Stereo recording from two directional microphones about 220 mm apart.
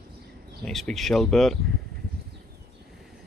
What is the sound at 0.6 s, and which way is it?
Speech, centre (ahead or behind).